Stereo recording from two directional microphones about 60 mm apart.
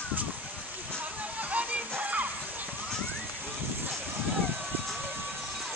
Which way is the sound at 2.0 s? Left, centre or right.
Right.